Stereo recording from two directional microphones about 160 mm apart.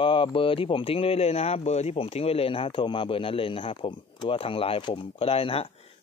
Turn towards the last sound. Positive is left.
turn(degrees=35)  # may be behind; listen again after turning